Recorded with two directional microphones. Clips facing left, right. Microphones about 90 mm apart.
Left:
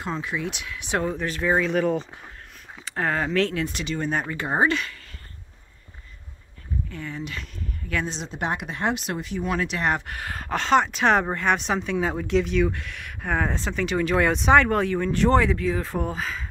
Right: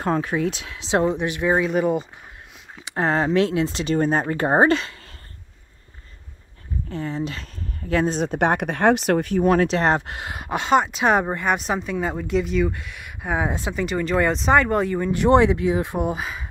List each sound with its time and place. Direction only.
0.0 s speech: 45° right (ahead or behind); by 2.0 s 5° right (ahead or behind)
2.8 s speech: 25° right (ahead or behind)
6.9 s speech: 35° right (ahead or behind); by 9.3 s 65° right (ahead or behind)
9.3 s speech: 45° right (ahead or behind); by 16.4 s 15° right (ahead or behind)